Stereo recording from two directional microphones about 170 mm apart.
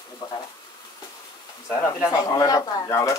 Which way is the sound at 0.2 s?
25° left (ahead or behind).